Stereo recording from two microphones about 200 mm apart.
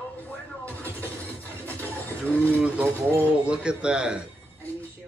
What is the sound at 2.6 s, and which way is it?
Speech, 5° right (ahead or behind).